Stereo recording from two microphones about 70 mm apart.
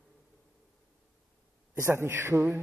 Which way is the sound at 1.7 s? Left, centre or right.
Right.